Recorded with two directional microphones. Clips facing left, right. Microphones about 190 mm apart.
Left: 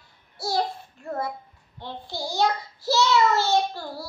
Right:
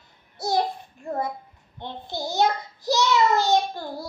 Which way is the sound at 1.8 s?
20° right (ahead or behind).